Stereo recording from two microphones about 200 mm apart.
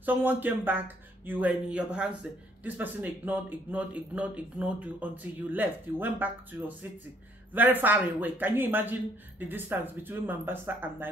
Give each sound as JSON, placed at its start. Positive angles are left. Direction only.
{"t": 0.0, "sound": "a man's voice", "side_deg": -10}